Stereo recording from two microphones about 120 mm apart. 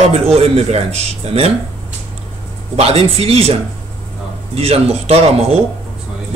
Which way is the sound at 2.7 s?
55° right (ahead or behind).